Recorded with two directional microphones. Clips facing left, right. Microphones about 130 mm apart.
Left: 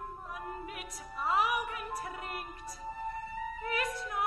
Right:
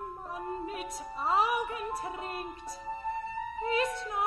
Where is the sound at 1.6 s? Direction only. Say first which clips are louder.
Right 4 dB; 25° right (ahead or behind).